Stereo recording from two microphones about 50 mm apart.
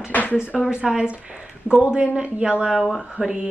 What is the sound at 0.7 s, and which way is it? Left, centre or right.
Speech, centre.